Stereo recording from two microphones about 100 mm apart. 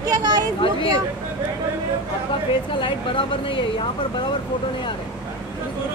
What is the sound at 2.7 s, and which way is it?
Speech, 55° left (ahead or behind).